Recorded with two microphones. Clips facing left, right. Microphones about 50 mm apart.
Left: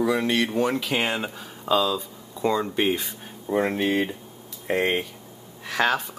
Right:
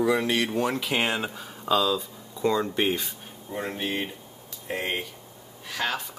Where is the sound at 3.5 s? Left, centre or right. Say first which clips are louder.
Left 8 dB; left.